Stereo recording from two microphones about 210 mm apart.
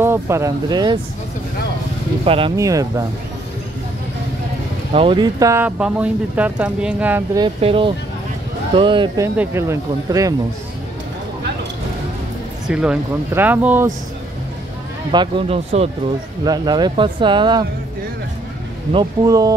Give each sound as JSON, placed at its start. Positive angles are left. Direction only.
{"t": 0.0, "sound": "speech", "side_deg": -10}
{"t": 2.2, "sound": "speech", "side_deg": -25}
{"t": 2.5, "sound": "speech", "side_deg": -15}
{"t": 4.9, "sound": "speech", "side_deg": -25}
{"t": 7.4, "sound": "speech", "side_deg": -25}
{"t": 12.6, "sound": "speech", "side_deg": -5}
{"t": 15.0, "sound": "speech", "side_deg": -25}
{"t": 18.9, "sound": "speech", "side_deg": -15}